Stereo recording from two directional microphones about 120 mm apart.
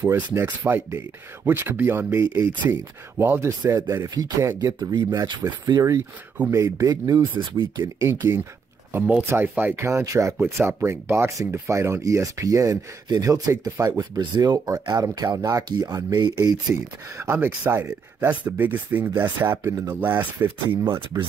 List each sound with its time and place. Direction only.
0.0 s speech: 25° right (ahead or behind)
7.8 s speech: 20° right (ahead or behind); by 16.5 s 35° right (ahead or behind)
16.7 s speech: 20° right (ahead or behind)